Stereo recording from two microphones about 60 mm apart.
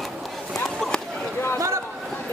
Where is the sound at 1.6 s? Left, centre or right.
Right.